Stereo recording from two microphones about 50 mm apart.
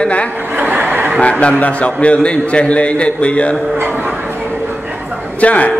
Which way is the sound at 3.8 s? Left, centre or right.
Right.